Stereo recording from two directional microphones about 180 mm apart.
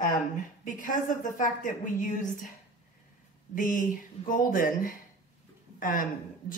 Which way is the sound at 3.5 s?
45° left (ahead or behind).